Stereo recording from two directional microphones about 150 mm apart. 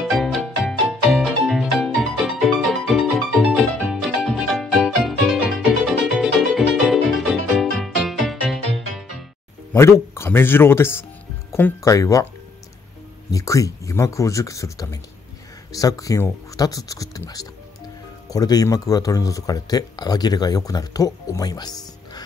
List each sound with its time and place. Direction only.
0.0 s music: centre (ahead or behind)
9.8 s speech: 20° left (ahead or behind)
13.3 s speech: 20° left (ahead or behind)